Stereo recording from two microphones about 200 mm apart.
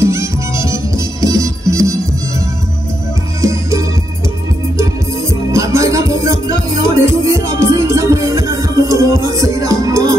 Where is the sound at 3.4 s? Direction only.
15° right (ahead or behind).